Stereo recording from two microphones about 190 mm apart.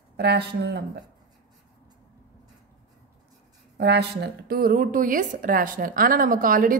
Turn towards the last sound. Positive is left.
turn(degrees=-45)  # may be behind; listen again after turning